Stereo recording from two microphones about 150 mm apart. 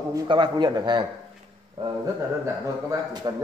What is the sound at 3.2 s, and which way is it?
Speech, 30° right (ahead or behind).